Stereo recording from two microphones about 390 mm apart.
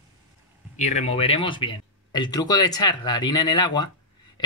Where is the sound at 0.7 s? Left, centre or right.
Centre.